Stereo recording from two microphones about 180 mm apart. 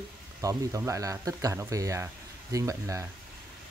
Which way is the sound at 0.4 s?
20° right (ahead or behind).